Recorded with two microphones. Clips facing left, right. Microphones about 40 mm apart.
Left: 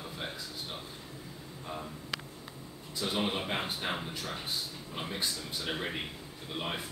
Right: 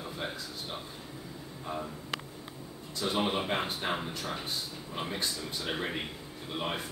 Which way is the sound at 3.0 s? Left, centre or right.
Centre.